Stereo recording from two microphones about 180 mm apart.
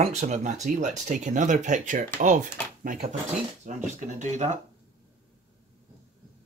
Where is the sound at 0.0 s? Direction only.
40° right (ahead or behind).